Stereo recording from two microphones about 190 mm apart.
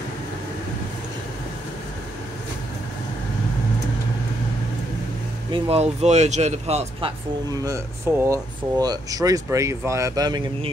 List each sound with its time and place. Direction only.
5.5 s speech: 30° right (ahead or behind)
7.6 s speech: 15° right (ahead or behind)